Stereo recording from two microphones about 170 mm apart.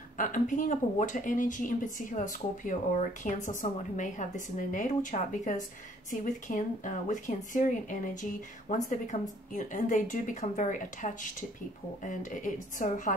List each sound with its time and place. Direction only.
0.2 s speech: 50° left (ahead or behind)